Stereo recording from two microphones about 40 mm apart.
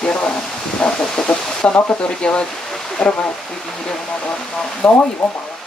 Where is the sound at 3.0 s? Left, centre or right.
Left.